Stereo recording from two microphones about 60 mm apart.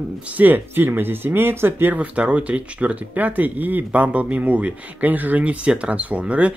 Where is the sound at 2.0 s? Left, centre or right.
Right.